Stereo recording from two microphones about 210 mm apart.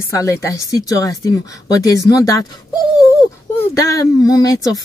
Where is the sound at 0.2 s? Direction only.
15° left (ahead or behind).